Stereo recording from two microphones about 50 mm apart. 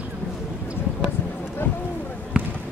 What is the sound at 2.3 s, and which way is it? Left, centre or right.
Basketball bounce, centre.